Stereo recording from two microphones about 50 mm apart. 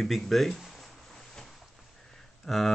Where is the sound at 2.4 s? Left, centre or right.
Centre.